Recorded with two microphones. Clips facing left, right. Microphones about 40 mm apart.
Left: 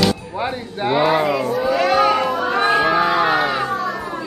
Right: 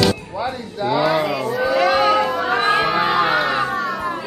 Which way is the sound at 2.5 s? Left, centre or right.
Right.